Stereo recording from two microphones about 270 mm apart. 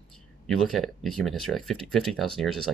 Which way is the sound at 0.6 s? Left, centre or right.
Centre.